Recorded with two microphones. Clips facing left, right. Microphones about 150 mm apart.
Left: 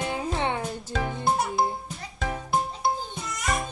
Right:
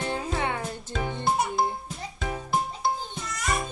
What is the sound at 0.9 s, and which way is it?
Music, 5° left (ahead or behind).